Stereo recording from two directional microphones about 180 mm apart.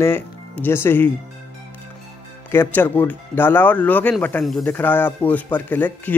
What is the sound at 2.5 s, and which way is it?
Speech, 10° left (ahead or behind).